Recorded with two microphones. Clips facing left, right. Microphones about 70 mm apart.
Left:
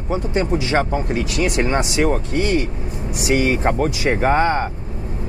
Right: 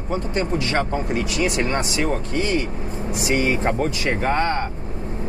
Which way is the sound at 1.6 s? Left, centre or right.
Centre.